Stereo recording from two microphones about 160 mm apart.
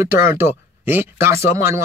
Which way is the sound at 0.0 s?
15° right (ahead or behind).